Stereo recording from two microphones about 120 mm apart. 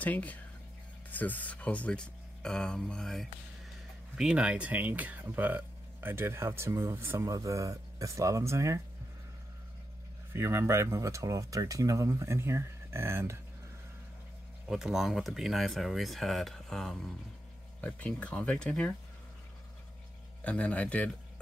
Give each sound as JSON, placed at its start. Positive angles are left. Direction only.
{"t": 0.0, "sound": "speech", "side_deg": 15}
{"t": 4.2, "sound": "speech", "side_deg": -10}
{"t": 10.3, "sound": "speech", "side_deg": -20}
{"t": 14.7, "sound": "speech", "side_deg": 0}
{"t": 20.4, "sound": "speech", "side_deg": 10}